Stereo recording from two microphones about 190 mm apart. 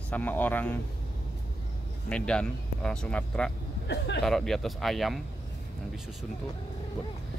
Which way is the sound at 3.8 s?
65° left (ahead or behind).